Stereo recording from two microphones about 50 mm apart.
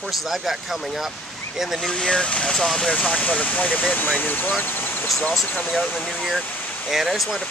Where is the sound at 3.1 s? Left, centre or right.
Left.